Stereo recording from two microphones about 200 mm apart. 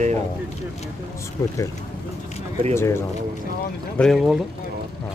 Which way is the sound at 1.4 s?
15° left (ahead or behind).